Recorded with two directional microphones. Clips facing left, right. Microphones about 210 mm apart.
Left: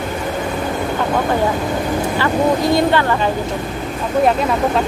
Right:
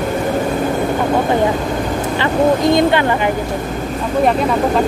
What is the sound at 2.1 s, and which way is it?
Speech, 20° right (ahead or behind).